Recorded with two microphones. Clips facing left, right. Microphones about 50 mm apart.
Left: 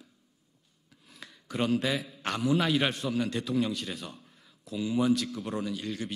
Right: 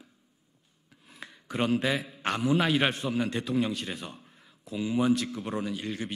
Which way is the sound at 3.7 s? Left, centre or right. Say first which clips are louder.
Right 1 dB; centre.